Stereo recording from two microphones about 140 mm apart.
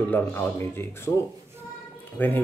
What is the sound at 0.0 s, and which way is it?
Speech, 15° left (ahead or behind).